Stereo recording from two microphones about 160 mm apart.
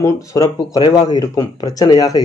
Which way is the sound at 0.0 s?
20° left (ahead or behind).